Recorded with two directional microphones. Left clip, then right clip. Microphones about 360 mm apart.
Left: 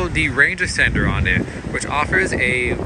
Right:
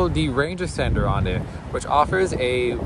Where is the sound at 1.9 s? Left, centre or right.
Centre.